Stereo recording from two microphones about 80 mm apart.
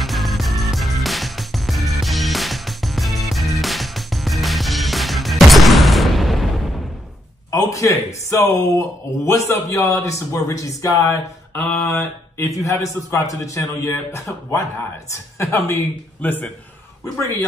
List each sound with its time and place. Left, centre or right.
0.0 s music: centre
7.5 s speech: left
16.2 s a man's voice: left